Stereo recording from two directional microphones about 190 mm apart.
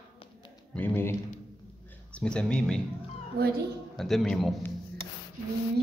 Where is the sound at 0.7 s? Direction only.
10° left (ahead or behind).